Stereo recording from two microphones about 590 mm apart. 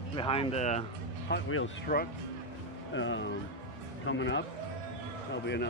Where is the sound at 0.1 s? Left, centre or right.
Centre.